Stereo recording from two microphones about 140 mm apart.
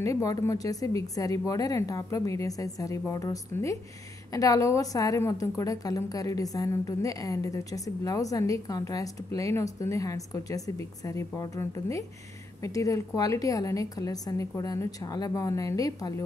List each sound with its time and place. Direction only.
0.0 s a woman's voice: 25° left (ahead or behind)